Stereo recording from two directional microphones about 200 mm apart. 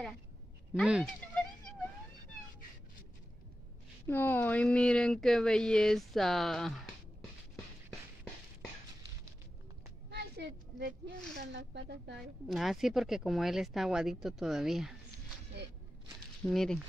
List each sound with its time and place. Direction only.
0.7 s speech: centre (ahead or behind)
4.1 s speech: 10° left (ahead or behind)
10.0 s a sound: 55° right (ahead or behind)
11.3 s speech: 60° right (ahead or behind)
12.4 s speech: centre (ahead or behind)
16.4 s speech: centre (ahead or behind)